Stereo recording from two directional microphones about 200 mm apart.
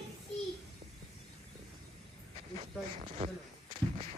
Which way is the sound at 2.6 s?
30° right (ahead or behind).